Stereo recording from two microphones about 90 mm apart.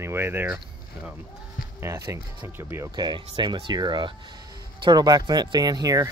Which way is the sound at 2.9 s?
55° right (ahead or behind).